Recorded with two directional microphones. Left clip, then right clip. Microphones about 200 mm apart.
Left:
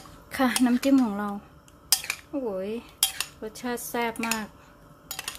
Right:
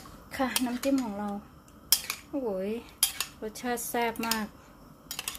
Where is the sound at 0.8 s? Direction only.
25° left (ahead or behind).